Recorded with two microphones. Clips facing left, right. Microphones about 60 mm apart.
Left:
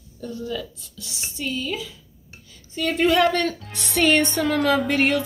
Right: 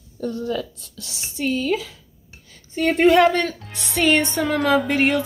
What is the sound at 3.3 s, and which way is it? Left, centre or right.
Speech, centre.